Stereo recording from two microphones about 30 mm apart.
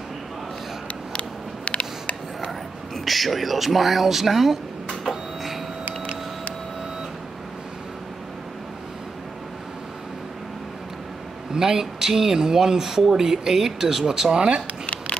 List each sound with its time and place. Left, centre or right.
1.1 s a sound: left
3.1 s speech: centre
5.0 s printer: centre
11.5 s speech: centre